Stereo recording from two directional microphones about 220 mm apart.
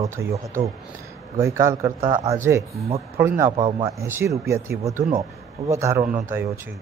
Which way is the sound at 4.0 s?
15° right (ahead or behind).